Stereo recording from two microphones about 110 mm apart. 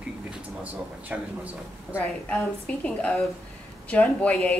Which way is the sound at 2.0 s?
10° left (ahead or behind).